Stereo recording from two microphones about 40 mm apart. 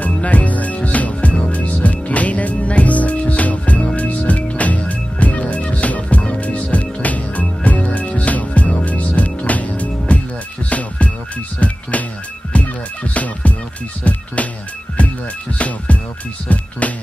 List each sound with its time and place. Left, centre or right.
0.0 s music: left
15.5 s music: left